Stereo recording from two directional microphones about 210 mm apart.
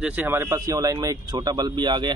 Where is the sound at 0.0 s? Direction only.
10° right (ahead or behind).